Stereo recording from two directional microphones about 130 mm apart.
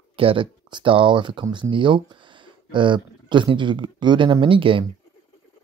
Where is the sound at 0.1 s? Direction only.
45° right (ahead or behind).